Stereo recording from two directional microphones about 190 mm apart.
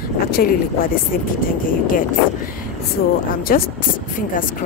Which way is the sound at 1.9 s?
45° left (ahead or behind).